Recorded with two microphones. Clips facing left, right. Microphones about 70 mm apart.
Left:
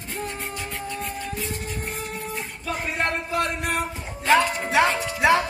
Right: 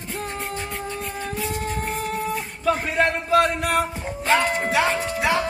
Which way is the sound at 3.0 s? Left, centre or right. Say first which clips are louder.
Right 6 dB; right.